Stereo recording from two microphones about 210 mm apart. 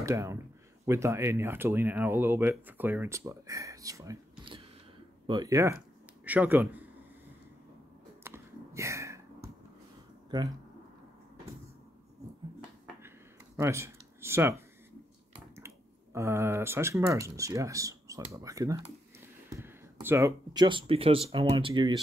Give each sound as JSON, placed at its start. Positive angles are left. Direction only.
{"t": 0.0, "sound": "speech", "side_deg": -15}
{"t": 8.2, "sound": "a sound", "side_deg": -10}
{"t": 13.6, "sound": "speech", "side_deg": -15}